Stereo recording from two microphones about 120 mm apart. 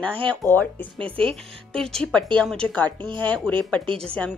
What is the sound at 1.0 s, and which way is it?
Speech, 50° right (ahead or behind).